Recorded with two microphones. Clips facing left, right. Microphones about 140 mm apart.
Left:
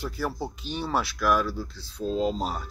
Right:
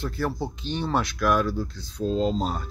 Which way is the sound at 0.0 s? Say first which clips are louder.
Right 2 dB; 10° left (ahead or behind).